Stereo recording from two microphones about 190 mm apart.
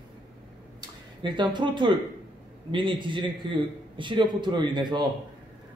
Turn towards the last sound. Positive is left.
turn(degrees=-25)  # may be behind; listen again after turning